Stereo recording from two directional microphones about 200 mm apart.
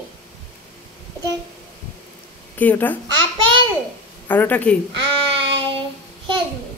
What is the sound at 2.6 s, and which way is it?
Speech, 10° left (ahead or behind).